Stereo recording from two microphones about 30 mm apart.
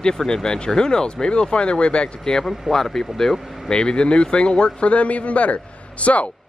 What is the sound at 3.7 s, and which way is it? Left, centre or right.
A man's voice, left.